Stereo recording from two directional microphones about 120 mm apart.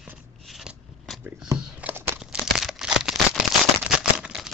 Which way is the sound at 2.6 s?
5° right (ahead or behind).